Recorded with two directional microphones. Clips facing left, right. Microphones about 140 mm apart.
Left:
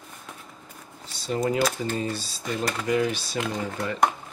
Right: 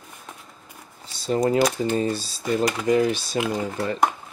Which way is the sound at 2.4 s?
5° right (ahead or behind).